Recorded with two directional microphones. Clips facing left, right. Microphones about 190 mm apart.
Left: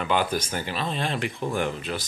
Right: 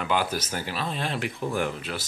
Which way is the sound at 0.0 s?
5° right (ahead or behind).